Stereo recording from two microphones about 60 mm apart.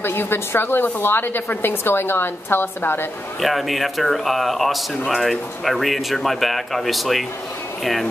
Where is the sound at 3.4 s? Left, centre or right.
Centre.